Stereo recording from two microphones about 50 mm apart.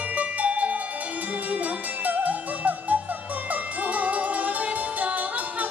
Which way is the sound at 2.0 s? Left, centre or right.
Right.